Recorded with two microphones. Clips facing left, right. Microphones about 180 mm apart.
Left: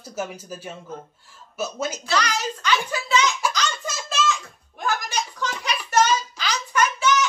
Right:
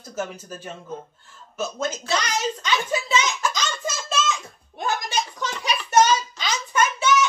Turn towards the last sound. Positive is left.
turn(degrees=-20)  # may be behind; listen again after turning